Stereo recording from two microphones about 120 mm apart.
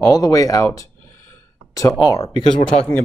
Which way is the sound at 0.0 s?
30° left (ahead or behind).